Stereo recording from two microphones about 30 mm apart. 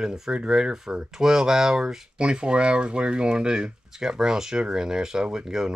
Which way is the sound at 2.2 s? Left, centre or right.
Right.